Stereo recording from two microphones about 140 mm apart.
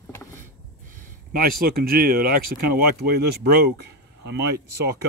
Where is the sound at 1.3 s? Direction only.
90° right.